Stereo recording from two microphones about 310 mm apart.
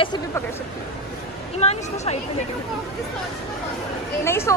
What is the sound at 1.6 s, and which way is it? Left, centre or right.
Speech, centre.